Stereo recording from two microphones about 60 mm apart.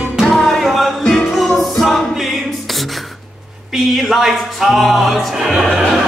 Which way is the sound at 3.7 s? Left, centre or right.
Centre.